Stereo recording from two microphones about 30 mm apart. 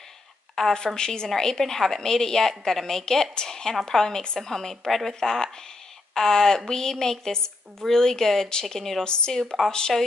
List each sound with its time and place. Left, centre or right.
0.6 s a woman's voice: left; by 9.0 s centre
9.0 s speech: left